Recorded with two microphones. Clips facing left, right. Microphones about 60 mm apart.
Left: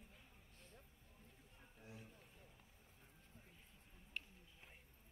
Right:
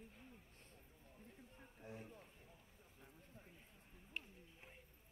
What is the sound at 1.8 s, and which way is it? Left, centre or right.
Speech, right.